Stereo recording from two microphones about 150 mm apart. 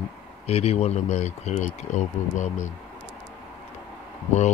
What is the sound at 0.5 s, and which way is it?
Speech, 45° left (ahead or behind).